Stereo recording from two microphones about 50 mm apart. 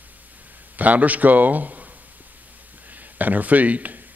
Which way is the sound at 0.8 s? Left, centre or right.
Right.